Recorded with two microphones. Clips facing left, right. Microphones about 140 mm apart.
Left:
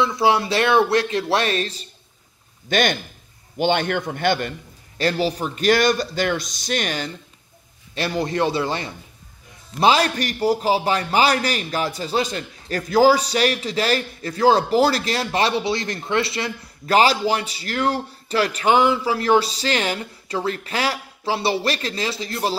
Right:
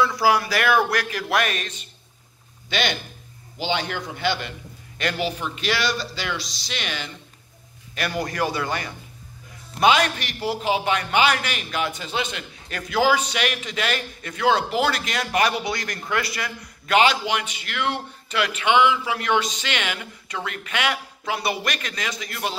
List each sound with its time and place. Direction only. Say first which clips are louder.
0.0 s speech: left 1 dB; 25° left (ahead or behind)
2.7 s speech: left 5 dB; 50° left (ahead or behind)
4.9 s speech: left 5 dB; 35° left (ahead or behind)
7.9 s a man's voice: left 4 dB; 25° left (ahead or behind)